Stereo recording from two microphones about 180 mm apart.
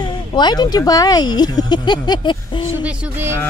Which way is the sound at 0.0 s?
25° left (ahead or behind).